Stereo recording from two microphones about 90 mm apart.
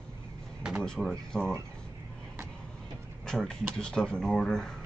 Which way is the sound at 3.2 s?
5° left (ahead or behind).